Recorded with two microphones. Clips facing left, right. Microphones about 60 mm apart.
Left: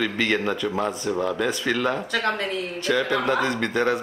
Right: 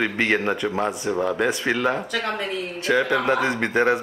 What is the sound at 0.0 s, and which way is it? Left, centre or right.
Speech, right.